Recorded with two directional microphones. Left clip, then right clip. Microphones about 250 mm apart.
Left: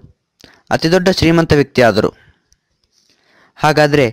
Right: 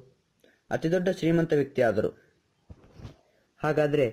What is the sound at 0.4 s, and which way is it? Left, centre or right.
Speech, left.